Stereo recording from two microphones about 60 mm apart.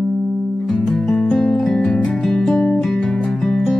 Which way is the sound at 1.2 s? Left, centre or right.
Centre.